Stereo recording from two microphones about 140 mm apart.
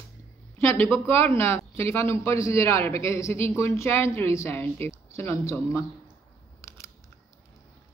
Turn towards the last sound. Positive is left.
turn(degrees=20)  # may be behind; listen again after turning